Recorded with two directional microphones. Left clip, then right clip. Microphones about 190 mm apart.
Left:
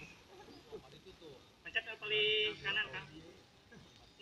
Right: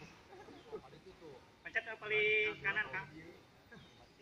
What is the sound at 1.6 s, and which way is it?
A man's voice, 20° left (ahead or behind).